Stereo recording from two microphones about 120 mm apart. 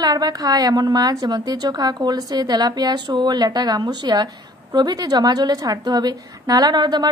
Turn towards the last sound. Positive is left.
turn(degrees=-35)  # may be behind; listen again after turning